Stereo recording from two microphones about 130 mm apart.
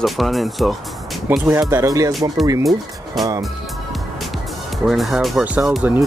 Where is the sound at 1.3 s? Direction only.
15° right (ahead or behind).